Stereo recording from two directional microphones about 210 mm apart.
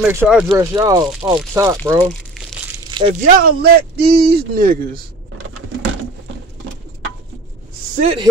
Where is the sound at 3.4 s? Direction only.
50° right (ahead or behind).